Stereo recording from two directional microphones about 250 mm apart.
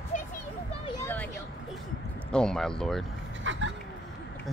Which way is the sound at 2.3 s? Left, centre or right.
Centre.